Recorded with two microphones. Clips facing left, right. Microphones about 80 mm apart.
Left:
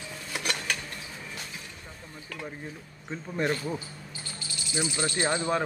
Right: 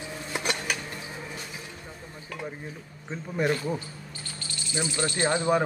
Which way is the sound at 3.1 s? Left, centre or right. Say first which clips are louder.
Right 2 dB; centre.